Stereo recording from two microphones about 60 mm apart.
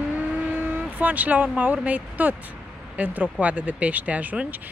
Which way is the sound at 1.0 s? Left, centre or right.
Right.